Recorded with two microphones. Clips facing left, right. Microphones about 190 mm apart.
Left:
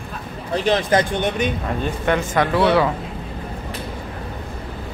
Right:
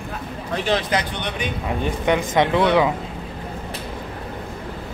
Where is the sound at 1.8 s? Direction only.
15° right (ahead or behind).